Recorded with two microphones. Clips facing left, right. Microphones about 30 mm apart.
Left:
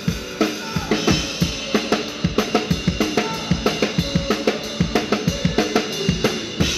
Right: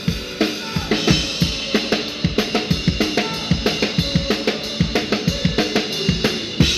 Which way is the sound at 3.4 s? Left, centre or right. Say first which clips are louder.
Even; right.